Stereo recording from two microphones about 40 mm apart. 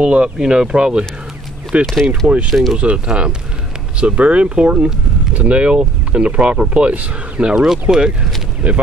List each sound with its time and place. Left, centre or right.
0.0 s speech: right
0.4 s speech: centre
1.7 s speech: right
2.5 s speech: centre
2.8 s speech: right
7.5 s speech: centre